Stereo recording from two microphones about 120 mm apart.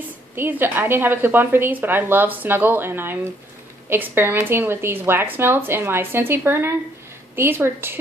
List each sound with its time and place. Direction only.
0.4 s a woman's voice: 15° right (ahead or behind)